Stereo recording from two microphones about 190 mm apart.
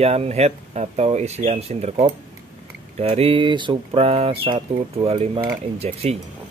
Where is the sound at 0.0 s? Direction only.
35° right (ahead or behind).